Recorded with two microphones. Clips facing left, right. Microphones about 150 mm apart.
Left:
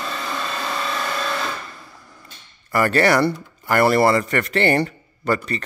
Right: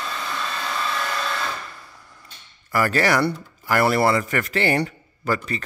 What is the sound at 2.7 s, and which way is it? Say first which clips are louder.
Speech: left 3 dB; centre (ahead or behind).